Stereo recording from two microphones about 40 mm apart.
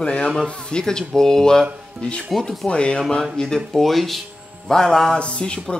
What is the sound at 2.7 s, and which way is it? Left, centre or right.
Speech, left.